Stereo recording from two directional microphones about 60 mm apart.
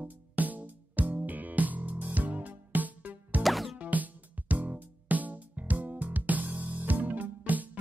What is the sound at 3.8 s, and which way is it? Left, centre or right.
Music, right.